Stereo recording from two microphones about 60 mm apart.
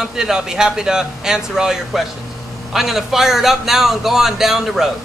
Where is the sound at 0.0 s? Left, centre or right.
Centre.